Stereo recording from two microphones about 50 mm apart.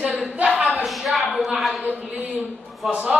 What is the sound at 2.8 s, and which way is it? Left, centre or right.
Speech, centre.